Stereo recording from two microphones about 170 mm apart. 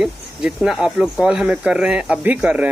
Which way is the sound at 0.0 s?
5° right (ahead or behind).